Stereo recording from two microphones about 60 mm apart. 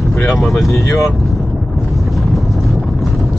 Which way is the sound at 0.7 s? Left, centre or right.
Left.